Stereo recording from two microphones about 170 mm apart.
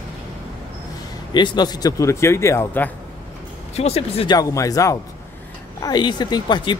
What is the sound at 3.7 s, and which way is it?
Speech, 35° left (ahead or behind).